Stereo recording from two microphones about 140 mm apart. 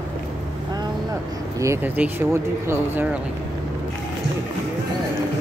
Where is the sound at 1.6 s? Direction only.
20° right (ahead or behind).